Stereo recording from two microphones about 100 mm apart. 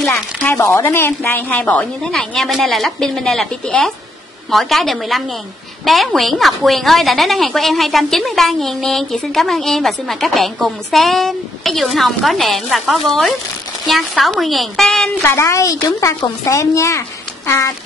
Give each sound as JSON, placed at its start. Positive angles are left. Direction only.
{"t": 0.1, "sound": "a woman's voice", "side_deg": 20}
{"t": 15.2, "sound": "a woman's voice", "side_deg": 30}